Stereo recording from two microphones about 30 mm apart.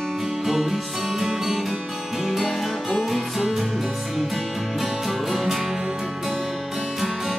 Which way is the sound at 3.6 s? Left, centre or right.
Centre.